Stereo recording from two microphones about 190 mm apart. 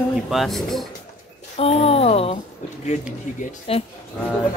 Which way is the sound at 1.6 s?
30° left (ahead or behind).